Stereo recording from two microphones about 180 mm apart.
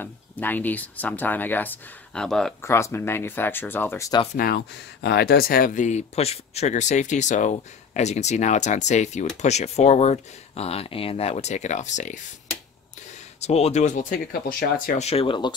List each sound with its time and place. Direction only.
0.0 s speech: 10° left (ahead or behind)
2.6 s speech: 15° left (ahead or behind)
4.4 s speech: 60° left (ahead or behind); by 12.2 s 40° left (ahead or behind)
13.4 s speech: 35° left (ahead or behind); by 15.0 s 55° left (ahead or behind)
15.0 s speech: 35° left (ahead or behind)